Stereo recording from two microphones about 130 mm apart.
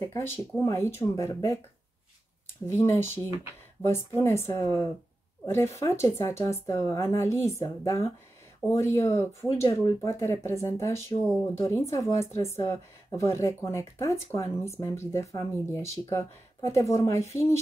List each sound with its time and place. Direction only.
0.0 s speech: 20° left (ahead or behind)
2.6 s speech: 20° left (ahead or behind)